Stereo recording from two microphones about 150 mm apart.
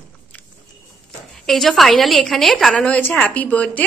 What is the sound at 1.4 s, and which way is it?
A woman's voice, centre (ahead or behind).